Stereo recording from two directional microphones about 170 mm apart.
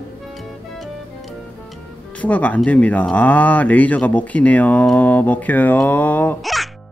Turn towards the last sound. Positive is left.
turn(degrees=10)  # may be behind; listen again after turning